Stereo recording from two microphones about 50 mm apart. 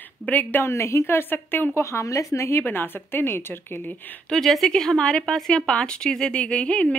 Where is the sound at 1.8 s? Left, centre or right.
Left.